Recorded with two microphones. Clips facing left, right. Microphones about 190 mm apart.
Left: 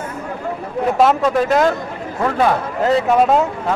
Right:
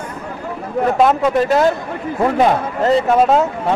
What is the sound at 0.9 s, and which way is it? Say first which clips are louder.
Speech: even; centre (ahead or behind).